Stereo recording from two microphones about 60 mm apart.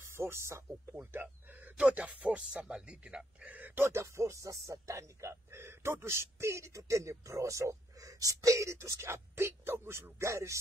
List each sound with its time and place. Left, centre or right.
0.0 s speech: right
1.2 s speech: right
3.4 s speech: right
3.8 s speech: right
10.1 s speech: right